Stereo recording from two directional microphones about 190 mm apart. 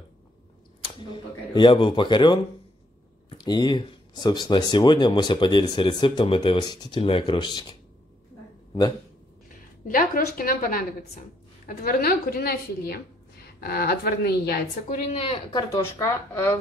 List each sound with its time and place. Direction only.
1.1 s speech: 25° left (ahead or behind)
9.8 s a woman's voice: 45° left (ahead or behind)
15.0 s speech: 30° left (ahead or behind)
15.7 s speech: 15° left (ahead or behind)